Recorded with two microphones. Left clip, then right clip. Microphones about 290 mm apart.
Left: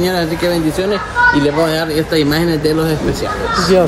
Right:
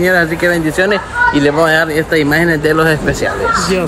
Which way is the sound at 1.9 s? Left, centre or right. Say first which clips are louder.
Right 2 dB; centre.